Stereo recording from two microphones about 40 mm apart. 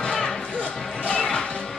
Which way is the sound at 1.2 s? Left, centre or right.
Centre.